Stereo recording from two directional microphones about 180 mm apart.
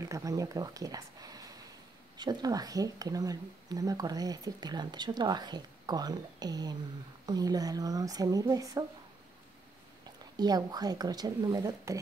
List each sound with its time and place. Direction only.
0.1 s speech: 20° right (ahead or behind)
10.3 s speech: 20° right (ahead or behind)